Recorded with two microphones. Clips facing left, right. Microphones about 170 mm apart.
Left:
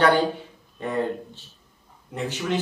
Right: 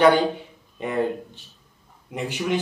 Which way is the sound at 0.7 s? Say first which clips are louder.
Right 2 dB; 15° right (ahead or behind).